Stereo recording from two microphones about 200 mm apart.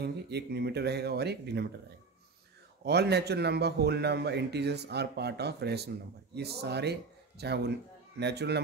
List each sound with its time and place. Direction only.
0.0 s speech: 55° right (ahead or behind)
2.8 s speech: 55° right (ahead or behind)